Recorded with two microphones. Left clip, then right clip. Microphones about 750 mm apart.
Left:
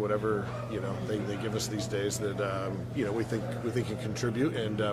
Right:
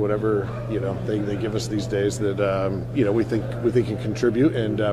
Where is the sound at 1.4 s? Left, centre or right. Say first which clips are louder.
Right 7 dB; right.